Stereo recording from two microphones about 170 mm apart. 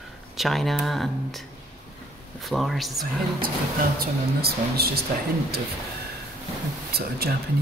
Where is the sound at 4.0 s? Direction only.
65° right (ahead or behind).